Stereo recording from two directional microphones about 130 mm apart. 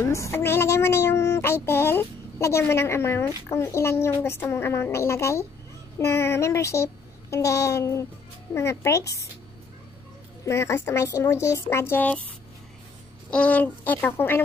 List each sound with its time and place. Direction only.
0.0 s a woman's voice: 20° left (ahead or behind)
10.4 s a woman's voice: 20° left (ahead or behind)
13.3 s speech: 10° left (ahead or behind)